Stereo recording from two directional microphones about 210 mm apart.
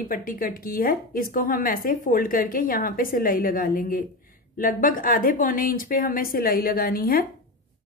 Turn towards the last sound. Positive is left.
turn(degrees=45)  # may be behind; listen again after turning